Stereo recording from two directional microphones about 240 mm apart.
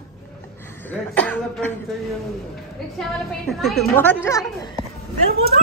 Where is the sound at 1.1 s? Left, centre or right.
Centre.